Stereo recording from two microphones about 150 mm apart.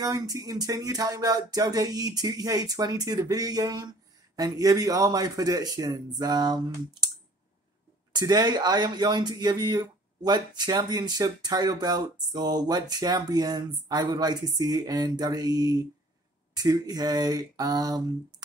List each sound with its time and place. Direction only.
0.0 s speech: 25° right (ahead or behind)
8.1 s speech: 30° right (ahead or behind)